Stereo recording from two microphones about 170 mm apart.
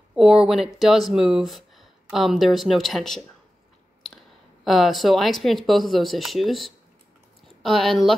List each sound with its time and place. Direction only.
0.1 s speech: 5° right (ahead or behind)
4.6 s speech: centre (ahead or behind)